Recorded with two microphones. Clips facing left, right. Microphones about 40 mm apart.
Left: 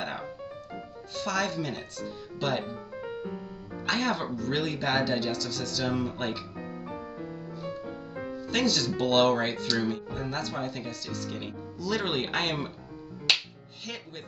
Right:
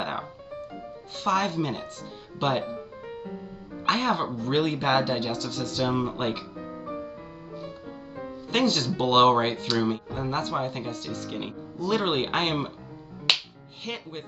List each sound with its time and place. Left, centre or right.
0.0 s music: right
1.1 s speech: right
3.8 s speech: right
6.6 s music: centre
8.5 s speech: right